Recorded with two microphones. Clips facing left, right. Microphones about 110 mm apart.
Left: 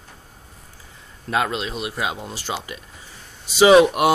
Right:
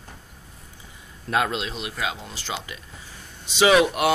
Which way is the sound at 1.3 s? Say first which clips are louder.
Left 1 dB; centre (ahead or behind).